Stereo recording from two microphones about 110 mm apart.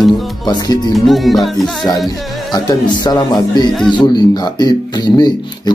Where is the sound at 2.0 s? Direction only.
40° left (ahead or behind).